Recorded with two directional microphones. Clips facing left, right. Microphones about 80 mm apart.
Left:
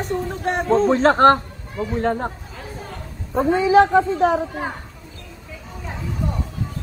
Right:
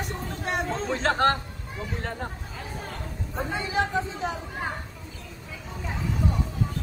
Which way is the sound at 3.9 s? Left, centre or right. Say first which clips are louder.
Left 12 dB; left.